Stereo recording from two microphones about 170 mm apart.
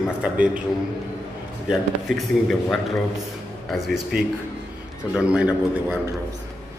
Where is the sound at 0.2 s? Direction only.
10° right (ahead or behind).